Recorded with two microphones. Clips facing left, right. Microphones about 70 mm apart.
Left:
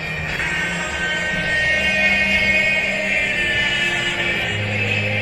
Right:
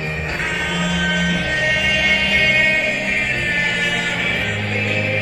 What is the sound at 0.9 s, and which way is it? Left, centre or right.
Music, right.